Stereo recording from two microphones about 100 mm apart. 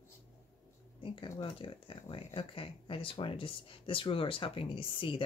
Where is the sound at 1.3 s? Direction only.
60° left (ahead or behind).